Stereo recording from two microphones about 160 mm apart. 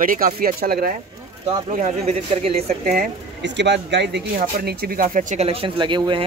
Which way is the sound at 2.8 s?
55° right (ahead or behind).